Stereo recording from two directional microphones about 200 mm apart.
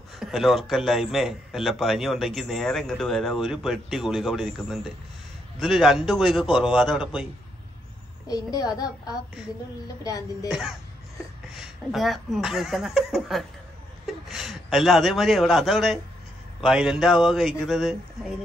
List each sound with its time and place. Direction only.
0.2 s speech: centre (ahead or behind)
8.3 s a child's voice: 20° left (ahead or behind)
10.5 s a man's voice: 5° right (ahead or behind)